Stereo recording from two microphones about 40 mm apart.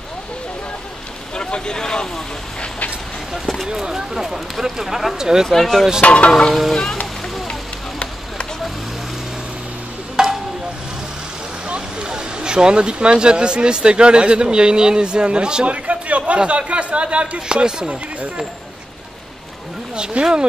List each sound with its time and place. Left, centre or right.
1.3 s speech: left
3.6 s speech: centre
5.5 s speech: centre
6.0 s frying: left
6.7 s speech: centre
10.2 s a sound: centre
11.6 s speech: right
15.6 s speech: right
20.2 s speech: right